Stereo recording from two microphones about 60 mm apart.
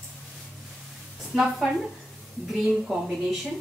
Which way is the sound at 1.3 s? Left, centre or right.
Centre.